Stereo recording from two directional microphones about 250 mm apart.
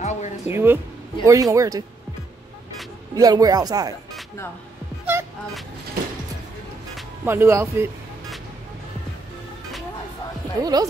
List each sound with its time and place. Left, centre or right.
0.0 s music: left
0.5 s speech: centre
3.2 s speech: centre
5.0 s music: centre
7.0 s speech: centre
10.6 s speech: centre